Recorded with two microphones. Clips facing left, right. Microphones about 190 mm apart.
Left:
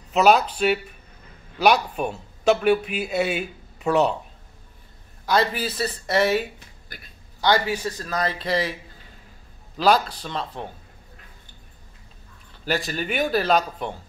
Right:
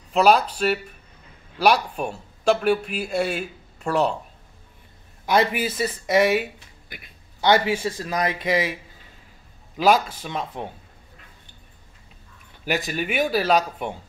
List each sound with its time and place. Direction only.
0.1 s speech: centre (ahead or behind)
5.2 s a man's voice: 20° right (ahead or behind)
7.4 s speech: 25° right (ahead or behind)
9.8 s speech: 10° right (ahead or behind)
12.6 s speech: 15° right (ahead or behind)